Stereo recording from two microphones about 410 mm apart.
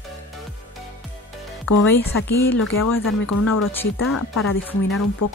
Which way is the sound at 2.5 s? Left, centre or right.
Left.